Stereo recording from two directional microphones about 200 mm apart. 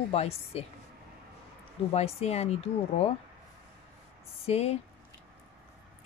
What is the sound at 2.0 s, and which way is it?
Speech, 30° left (ahead or behind).